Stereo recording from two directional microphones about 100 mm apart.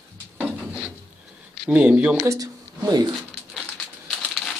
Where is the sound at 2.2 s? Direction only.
35° right (ahead or behind).